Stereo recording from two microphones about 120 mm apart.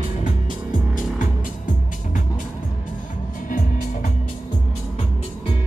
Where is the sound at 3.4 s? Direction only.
90° left.